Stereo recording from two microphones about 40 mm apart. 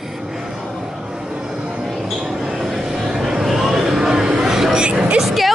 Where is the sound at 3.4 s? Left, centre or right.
Centre.